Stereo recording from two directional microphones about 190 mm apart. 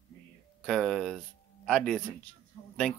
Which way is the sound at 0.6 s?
Centre (ahead or behind).